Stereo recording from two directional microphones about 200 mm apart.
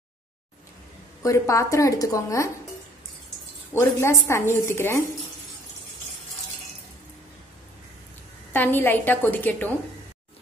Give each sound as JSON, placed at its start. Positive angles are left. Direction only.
{"t": 1.2, "sound": "speech", "side_deg": 15}
{"t": 3.7, "sound": "speech", "side_deg": 15}
{"t": 8.5, "sound": "speech", "side_deg": 10}